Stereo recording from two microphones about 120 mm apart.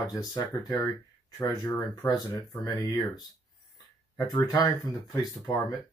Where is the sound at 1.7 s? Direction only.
30° left (ahead or behind).